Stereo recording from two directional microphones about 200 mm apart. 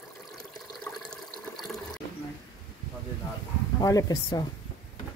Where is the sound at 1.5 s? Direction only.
Centre (ahead or behind).